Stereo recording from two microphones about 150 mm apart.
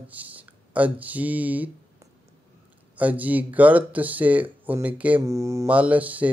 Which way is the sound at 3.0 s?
10° right (ahead or behind).